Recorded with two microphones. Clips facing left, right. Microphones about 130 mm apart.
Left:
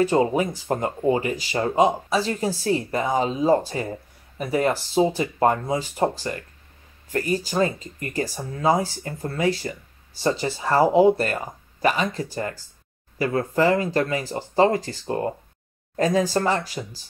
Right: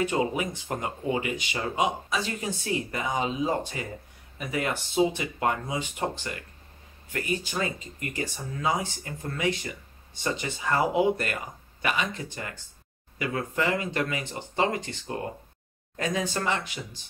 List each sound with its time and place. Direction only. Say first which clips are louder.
0.0 s speech: left 7 dB; 35° left (ahead or behind)